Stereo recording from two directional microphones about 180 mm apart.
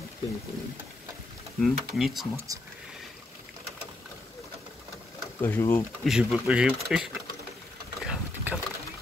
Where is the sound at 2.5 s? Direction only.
20° right (ahead or behind).